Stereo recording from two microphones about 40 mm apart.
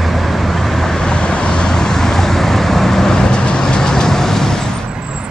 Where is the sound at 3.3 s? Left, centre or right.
Left.